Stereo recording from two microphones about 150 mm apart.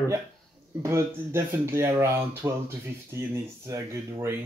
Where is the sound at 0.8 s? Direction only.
15° right (ahead or behind).